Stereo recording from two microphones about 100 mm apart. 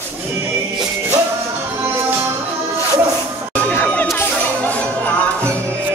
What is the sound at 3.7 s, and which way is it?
Crowd, 20° left (ahead or behind).